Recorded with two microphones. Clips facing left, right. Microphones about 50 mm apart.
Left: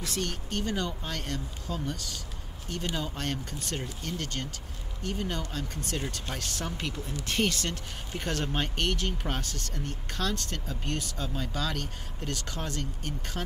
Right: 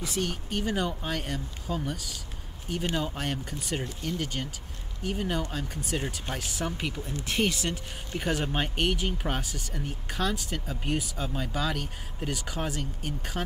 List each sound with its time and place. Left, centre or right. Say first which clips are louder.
0.0 s speech: right 2 dB; centre